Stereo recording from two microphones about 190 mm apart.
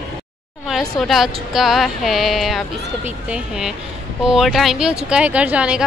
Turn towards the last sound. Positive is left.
turn(degrees=-5)  # may be behind; listen again after turning